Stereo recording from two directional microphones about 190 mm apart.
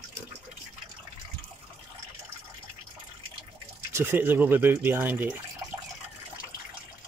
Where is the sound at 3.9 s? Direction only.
10° right (ahead or behind).